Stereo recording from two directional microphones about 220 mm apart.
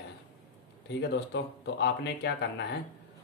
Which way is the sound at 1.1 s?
50° left (ahead or behind).